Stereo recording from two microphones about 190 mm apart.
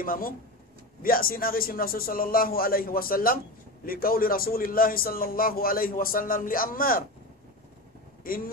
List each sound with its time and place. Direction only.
0.0 s a man's voice: 50° left (ahead or behind)